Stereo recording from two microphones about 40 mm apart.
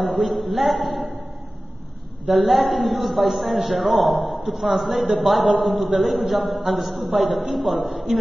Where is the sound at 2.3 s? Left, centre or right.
Centre.